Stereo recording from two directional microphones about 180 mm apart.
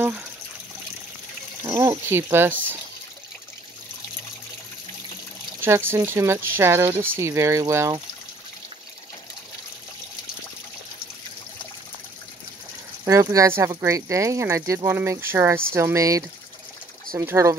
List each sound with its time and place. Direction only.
1.6 s speech: 15° right (ahead or behind)
5.6 s speech: 10° right (ahead or behind)
13.0 s speech: 15° right (ahead or behind)